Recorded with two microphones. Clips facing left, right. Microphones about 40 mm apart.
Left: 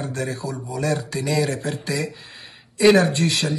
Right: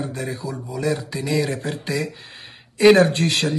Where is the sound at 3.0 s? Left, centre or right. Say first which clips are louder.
Right 2 dB; right.